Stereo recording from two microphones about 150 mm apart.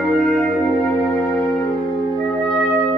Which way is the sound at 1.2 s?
30° left (ahead or behind).